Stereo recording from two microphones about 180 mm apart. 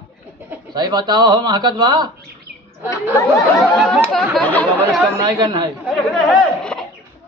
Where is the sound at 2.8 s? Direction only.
10° right (ahead or behind).